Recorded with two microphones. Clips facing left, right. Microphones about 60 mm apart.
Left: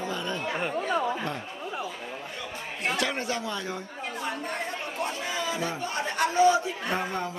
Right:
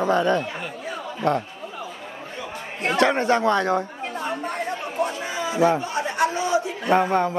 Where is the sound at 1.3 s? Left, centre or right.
Right.